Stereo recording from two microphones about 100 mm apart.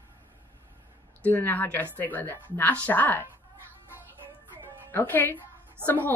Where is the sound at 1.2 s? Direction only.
20° left (ahead or behind).